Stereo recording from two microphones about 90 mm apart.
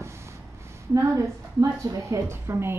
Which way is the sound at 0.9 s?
35° right (ahead or behind).